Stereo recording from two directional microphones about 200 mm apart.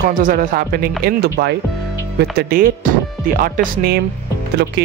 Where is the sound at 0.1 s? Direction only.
40° right (ahead or behind).